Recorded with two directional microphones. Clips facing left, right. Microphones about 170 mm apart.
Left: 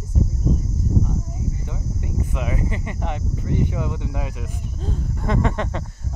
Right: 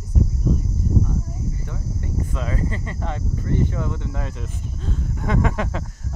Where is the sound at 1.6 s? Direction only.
15° left (ahead or behind).